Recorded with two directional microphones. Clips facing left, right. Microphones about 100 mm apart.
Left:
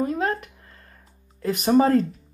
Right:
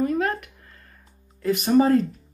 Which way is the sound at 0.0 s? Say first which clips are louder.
Right 1 dB; 30° left (ahead or behind).